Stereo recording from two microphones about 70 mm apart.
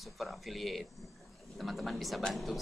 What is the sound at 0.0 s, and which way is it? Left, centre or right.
Speech, centre.